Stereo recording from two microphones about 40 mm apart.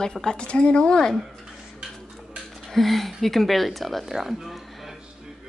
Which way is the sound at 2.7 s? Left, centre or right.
Centre.